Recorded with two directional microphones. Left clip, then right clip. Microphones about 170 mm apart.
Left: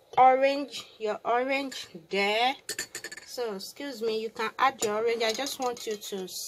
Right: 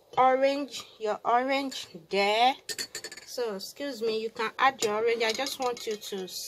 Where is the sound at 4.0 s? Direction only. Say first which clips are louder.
Even; 15° left (ahead or behind).